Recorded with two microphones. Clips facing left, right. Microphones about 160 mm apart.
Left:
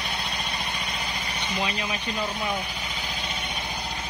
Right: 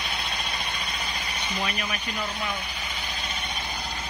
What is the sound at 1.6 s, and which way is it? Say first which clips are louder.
Speech: left 1 dB; 20° left (ahead or behind).